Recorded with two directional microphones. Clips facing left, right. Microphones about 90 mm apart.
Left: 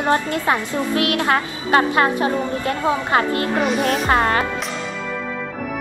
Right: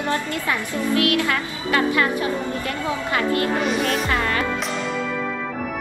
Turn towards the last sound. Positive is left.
turn(degrees=35)  # may be behind; listen again after turning